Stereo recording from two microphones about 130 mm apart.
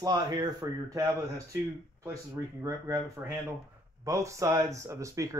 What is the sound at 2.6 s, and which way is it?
A man's voice, 25° right (ahead or behind).